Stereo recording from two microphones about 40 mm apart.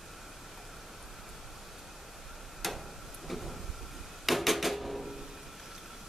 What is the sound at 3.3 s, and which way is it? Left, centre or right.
Vehicle, centre.